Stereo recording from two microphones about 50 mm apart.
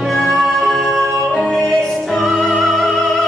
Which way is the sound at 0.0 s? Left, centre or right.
Centre.